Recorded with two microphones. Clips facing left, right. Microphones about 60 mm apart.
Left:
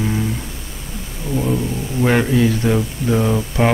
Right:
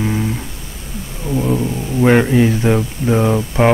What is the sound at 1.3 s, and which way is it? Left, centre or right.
Speech, centre.